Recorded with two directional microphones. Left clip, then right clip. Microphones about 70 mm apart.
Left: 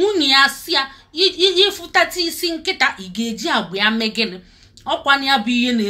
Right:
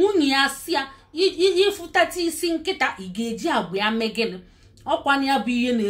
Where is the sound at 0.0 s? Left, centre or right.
Right.